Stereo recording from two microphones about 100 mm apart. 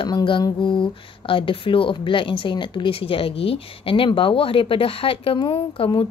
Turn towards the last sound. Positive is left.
turn(degrees=60)  # may be behind; listen again after turning